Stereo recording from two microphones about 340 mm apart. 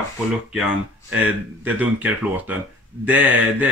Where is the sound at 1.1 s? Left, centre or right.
Centre.